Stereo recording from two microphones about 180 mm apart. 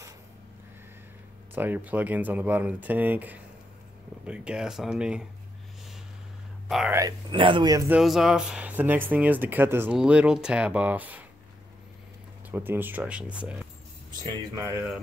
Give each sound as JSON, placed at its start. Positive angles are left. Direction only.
{"t": 1.5, "sound": "speech", "side_deg": -10}
{"t": 6.9, "sound": "speech", "side_deg": -20}
{"t": 7.9, "sound": "speech", "side_deg": 0}
{"t": 12.4, "sound": "speech", "side_deg": -10}
{"t": 14.1, "sound": "speech", "side_deg": -25}